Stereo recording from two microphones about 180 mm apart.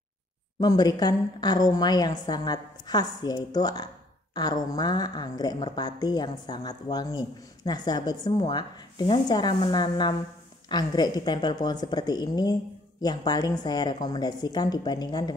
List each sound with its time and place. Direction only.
0.6 s a woman's voice: 20° left (ahead or behind)